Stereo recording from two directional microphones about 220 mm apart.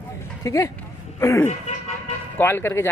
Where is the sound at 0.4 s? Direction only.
15° left (ahead or behind).